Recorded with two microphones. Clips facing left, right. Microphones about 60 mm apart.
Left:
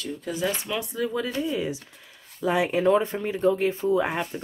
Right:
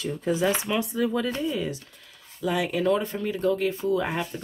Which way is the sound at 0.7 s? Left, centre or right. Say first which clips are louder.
Right 2 dB; centre.